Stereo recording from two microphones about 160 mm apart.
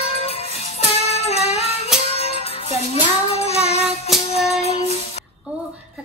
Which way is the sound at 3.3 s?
40° left (ahead or behind).